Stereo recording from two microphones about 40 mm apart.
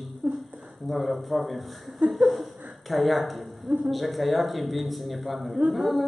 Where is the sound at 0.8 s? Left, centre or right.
Centre.